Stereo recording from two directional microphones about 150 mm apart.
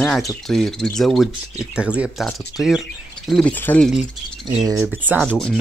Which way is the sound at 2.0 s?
5° left (ahead or behind).